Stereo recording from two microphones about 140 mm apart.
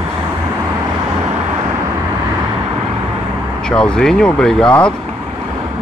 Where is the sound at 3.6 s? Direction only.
5° left (ahead or behind).